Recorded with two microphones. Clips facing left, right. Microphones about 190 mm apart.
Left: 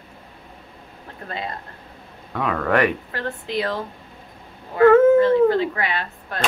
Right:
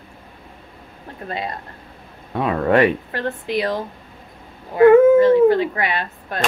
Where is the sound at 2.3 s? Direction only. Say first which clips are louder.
Right 4 dB; 25° right (ahead or behind).